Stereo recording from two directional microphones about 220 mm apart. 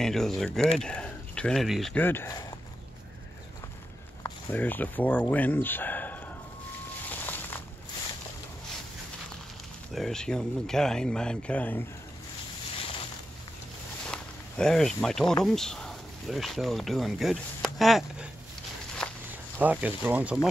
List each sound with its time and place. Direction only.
0.0 s speech: centre (ahead or behind)
4.2 s speech: 10° left (ahead or behind)
7.1 s a sound: 10° left (ahead or behind)
9.9 s speech: centre (ahead or behind)
12.7 s a sound: 25° left (ahead or behind)
14.0 s a sound: 5° left (ahead or behind)
15.4 s speech: centre (ahead or behind)
19.0 s walk: 5° left (ahead or behind)
19.6 s speech: 5° right (ahead or behind)